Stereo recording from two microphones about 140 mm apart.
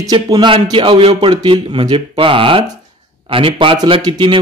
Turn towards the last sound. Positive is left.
turn(degrees=-35)  # may be behind; listen again after turning